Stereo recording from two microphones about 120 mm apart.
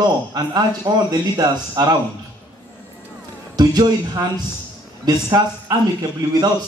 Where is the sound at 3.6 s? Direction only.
35° right (ahead or behind).